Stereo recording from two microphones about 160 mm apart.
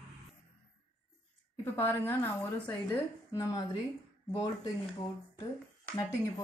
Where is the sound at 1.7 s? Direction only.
15° left (ahead or behind).